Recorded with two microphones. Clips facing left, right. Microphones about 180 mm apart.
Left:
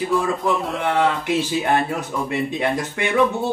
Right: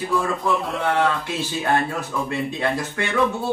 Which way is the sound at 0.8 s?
20° left (ahead or behind).